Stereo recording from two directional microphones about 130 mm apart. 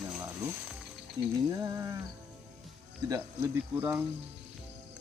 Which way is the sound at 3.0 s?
25° right (ahead or behind).